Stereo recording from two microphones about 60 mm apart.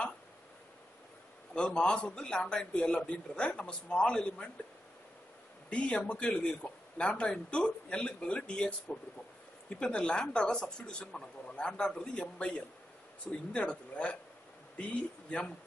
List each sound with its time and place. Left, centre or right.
1.5 s a man's voice: centre
5.7 s a man's voice: left